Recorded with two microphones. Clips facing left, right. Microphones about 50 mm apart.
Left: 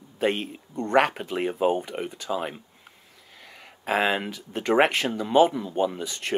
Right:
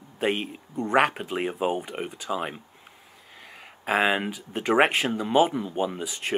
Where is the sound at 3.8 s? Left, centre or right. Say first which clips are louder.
Right 1 dB; centre.